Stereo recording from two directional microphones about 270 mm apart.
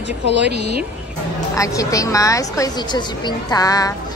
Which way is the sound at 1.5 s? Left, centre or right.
Centre.